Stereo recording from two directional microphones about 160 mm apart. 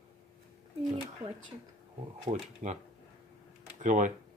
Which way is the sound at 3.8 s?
50° right (ahead or behind).